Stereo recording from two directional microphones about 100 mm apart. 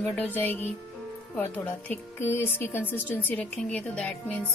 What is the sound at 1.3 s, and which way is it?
Speech, 15° left (ahead or behind).